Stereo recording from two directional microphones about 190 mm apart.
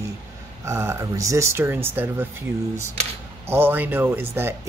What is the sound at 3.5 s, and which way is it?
Speech, 10° right (ahead or behind).